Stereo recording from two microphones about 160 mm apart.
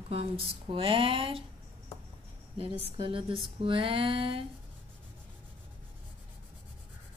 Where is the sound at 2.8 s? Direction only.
35° right (ahead or behind).